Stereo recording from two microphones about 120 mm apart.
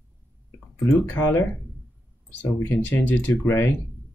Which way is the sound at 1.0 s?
15° left (ahead or behind).